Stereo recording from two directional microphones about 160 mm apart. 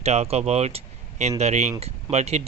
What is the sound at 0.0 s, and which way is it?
Speech, 40° right (ahead or behind).